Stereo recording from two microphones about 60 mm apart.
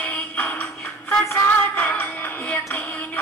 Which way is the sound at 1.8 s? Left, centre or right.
Left.